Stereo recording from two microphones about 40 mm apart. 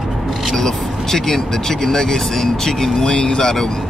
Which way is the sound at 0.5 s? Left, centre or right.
Centre.